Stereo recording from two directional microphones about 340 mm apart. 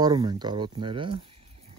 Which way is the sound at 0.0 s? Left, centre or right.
Centre.